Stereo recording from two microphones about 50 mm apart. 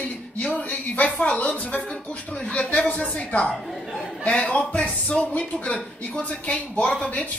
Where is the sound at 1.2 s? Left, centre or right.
Left.